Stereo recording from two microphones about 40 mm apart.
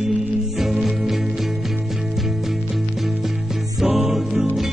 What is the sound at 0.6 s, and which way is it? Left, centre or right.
Music, centre.